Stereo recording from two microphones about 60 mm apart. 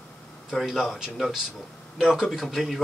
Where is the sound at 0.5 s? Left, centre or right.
Centre.